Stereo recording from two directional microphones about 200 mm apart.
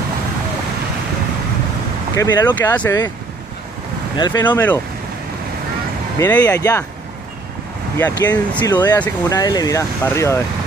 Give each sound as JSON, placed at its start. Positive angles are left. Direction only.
{"t": 2.1, "sound": "speech", "side_deg": 10}
{"t": 4.2, "sound": "speech", "side_deg": 20}
{"t": 6.1, "sound": "speech", "side_deg": 10}
{"t": 8.0, "sound": "speech", "side_deg": 20}